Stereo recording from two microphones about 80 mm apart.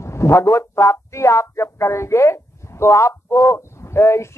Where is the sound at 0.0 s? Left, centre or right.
Left.